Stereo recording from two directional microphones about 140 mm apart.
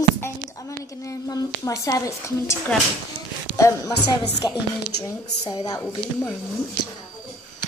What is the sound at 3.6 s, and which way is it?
A woman's voice, 20° left (ahead or behind).